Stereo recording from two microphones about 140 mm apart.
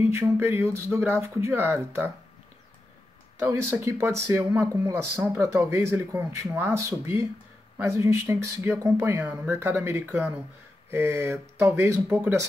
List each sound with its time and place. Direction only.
0.1 s speech: 20° right (ahead or behind)
3.3 s speech: 20° right (ahead or behind)